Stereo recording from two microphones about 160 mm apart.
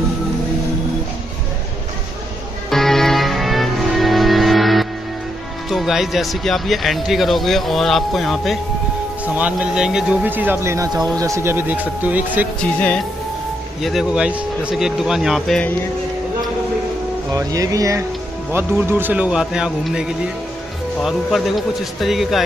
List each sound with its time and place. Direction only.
2.7 s music: centre (ahead or behind)
5.7 s speech: centre (ahead or behind)
12.5 s speech: 5° left (ahead or behind)
17.3 s speech: 20° right (ahead or behind); by 22.4 s centre (ahead or behind)